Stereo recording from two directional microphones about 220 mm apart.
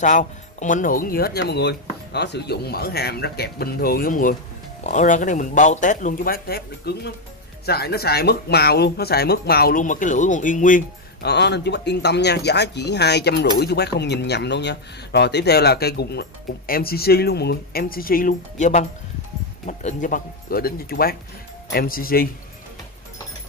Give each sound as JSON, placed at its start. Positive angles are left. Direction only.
{"t": 0.0, "sound": "speech", "side_deg": 35}
{"t": 11.2, "sound": "speech", "side_deg": 50}